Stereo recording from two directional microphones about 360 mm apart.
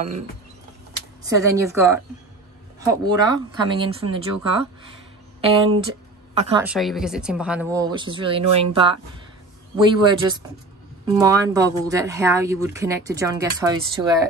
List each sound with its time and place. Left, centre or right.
1.3 s a woman's voice: centre
6.6 s speech: centre